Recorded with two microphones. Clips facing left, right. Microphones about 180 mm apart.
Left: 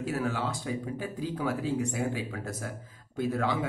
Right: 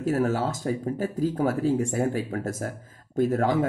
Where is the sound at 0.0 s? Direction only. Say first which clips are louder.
Right 7 dB; 45° right (ahead or behind).